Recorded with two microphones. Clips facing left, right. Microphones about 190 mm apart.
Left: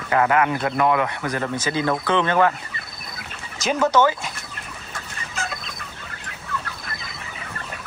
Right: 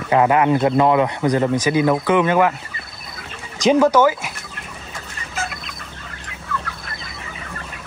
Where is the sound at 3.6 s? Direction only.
10° right (ahead or behind).